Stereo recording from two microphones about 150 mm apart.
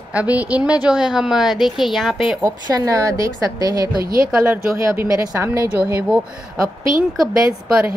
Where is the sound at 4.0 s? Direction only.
75° right (ahead or behind).